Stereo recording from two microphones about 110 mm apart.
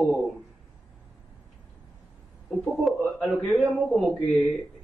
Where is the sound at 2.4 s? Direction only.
Centre (ahead or behind).